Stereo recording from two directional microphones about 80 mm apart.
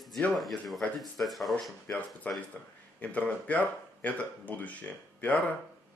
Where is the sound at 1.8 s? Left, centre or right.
Centre.